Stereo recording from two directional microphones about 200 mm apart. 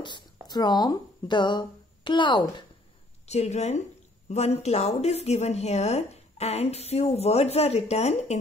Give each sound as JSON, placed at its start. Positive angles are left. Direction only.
{"t": 0.0, "sound": "speech", "side_deg": 20}
{"t": 3.3, "sound": "a woman's voice", "side_deg": 35}